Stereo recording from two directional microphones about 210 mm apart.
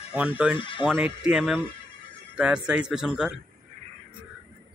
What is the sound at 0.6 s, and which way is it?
Speech, 25° left (ahead or behind).